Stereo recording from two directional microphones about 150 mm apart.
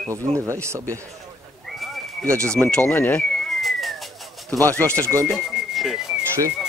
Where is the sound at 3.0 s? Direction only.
10° left (ahead or behind).